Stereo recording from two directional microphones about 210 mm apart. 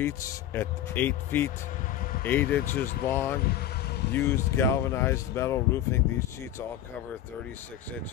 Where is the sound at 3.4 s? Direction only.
50° left (ahead or behind).